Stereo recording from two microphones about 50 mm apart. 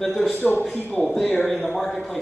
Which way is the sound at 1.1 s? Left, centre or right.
Centre.